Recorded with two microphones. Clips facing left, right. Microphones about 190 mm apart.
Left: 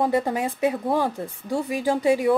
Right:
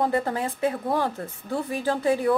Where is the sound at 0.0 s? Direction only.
15° left (ahead or behind).